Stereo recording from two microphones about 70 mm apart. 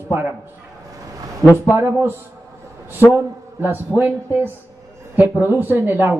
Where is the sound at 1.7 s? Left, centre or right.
Right.